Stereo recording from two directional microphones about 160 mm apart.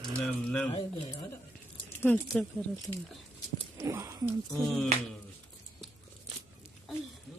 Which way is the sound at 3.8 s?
20° right (ahead or behind).